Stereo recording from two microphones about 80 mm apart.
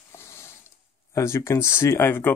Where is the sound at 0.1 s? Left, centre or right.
Left.